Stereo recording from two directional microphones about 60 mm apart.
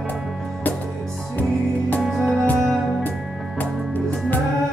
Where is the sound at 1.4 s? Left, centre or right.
Left.